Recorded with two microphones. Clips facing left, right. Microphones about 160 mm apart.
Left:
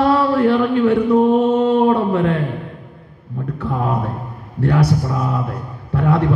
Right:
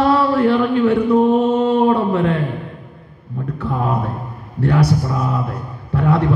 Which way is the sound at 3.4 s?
55° left (ahead or behind).